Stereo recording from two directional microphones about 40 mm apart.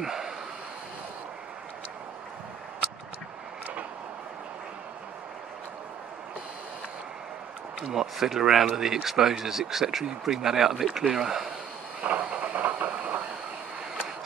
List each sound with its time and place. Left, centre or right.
0.0 s a sound: centre
7.9 s speech: centre
12.0 s train: right